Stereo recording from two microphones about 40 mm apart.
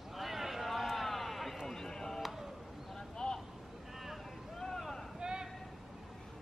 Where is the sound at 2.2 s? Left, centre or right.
Centre.